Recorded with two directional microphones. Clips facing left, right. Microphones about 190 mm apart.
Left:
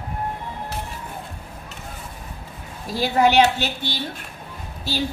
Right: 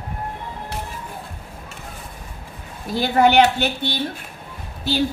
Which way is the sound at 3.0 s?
55° right (ahead or behind).